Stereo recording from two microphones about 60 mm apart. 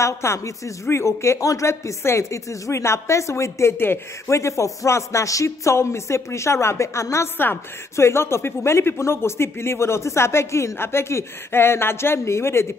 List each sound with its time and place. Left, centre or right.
0.0 s speech: left
3.7 s speech: left
4.3 s speech: left